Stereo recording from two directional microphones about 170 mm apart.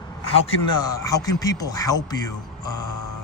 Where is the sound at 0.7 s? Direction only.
20° left (ahead or behind).